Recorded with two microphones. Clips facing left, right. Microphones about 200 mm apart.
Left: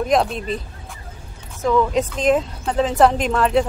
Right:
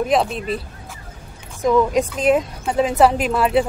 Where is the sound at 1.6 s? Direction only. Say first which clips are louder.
Right 2 dB; 15° right (ahead or behind).